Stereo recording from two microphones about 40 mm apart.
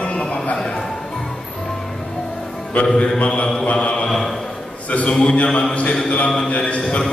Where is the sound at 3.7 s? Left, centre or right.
Left.